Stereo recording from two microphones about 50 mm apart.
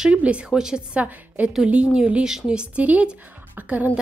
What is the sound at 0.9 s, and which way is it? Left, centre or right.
A woman's voice, right.